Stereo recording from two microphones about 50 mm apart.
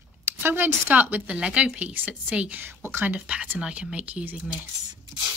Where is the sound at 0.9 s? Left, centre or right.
Right.